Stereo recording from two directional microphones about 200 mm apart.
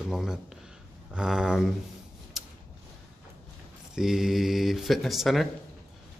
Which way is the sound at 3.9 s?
Centre (ahead or behind).